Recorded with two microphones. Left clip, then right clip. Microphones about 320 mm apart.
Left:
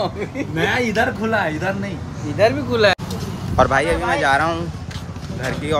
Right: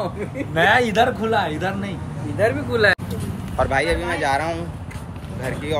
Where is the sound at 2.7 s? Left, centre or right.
Left.